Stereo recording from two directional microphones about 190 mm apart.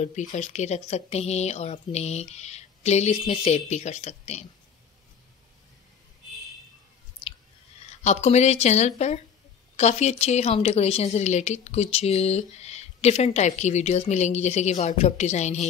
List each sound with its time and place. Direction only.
0.0 s a woman's voice: 35° left (ahead or behind)
8.0 s a woman's voice: 35° left (ahead or behind)